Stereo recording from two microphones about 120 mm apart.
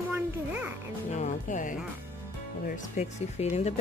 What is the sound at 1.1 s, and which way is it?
Speech, 85° left.